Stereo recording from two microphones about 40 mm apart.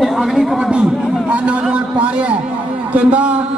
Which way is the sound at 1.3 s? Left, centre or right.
Right.